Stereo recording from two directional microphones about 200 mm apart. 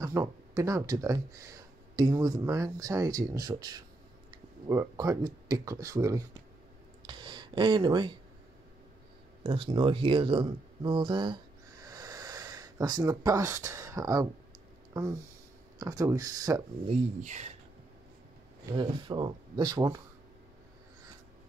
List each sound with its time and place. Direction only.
0.0 s speech: 15° right (ahead or behind)
7.1 s a sound: 25° right (ahead or behind)
9.4 s speech: 25° right (ahead or behind)
11.8 s a sound: 20° right (ahead or behind)
15.8 s speech: 15° right (ahead or behind)
16.9 s speech: 35° right (ahead or behind)
18.7 s speech: 25° right (ahead or behind)